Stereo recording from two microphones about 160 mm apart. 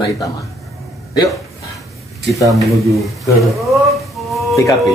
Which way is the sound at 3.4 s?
Centre (ahead or behind).